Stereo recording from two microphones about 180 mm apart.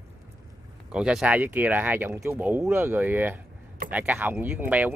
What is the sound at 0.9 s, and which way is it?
Speech, 5° right (ahead or behind).